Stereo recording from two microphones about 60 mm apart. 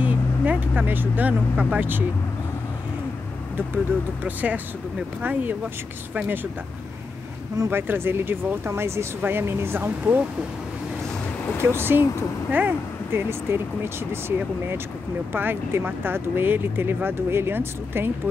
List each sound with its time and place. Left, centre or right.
0.0 s speech: right
3.5 s speech: right
7.7 s speech: right
11.6 s speech: right
13.3 s speech: right
15.3 s speech: right